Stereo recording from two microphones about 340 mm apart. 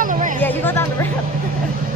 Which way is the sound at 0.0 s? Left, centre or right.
Right.